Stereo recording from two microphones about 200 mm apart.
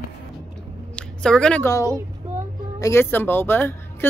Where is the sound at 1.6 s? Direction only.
15° left (ahead or behind).